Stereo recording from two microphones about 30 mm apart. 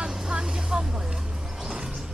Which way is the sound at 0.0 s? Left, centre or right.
Right.